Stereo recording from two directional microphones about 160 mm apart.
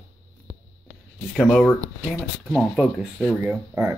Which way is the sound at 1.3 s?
Centre (ahead or behind).